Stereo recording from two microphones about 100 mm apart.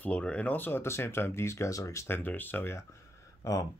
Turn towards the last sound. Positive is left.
turn(degrees=35)  # may be behind; listen again after turning